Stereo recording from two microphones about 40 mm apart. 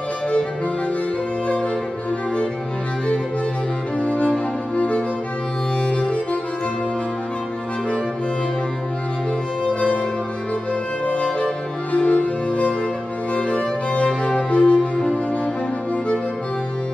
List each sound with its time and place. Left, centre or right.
4.0 s music: left
11.1 s music: left